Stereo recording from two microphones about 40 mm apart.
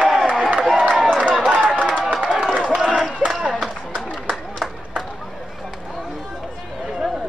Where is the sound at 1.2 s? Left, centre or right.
Right.